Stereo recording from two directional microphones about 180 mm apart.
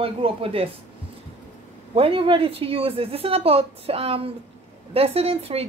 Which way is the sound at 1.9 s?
30° right (ahead or behind).